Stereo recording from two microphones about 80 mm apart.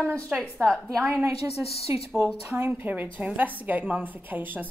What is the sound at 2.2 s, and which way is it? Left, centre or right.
A woman's voice, right.